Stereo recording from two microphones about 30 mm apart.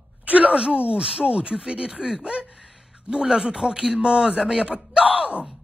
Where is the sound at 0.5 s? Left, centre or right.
Right.